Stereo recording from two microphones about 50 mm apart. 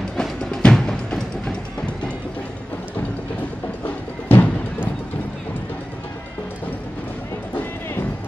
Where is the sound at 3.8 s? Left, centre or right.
Left.